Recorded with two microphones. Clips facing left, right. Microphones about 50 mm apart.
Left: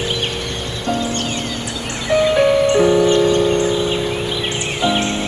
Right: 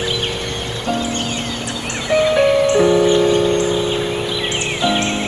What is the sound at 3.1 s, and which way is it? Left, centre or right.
Music, centre.